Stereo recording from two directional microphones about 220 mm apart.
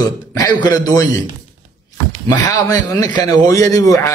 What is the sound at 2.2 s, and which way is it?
A man's voice, 15° left (ahead or behind).